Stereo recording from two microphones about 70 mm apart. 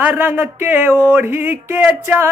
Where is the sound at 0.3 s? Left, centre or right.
Right.